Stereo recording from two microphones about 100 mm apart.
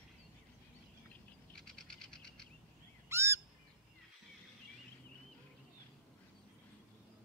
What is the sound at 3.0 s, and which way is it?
Bird vocalization, 25° right (ahead or behind).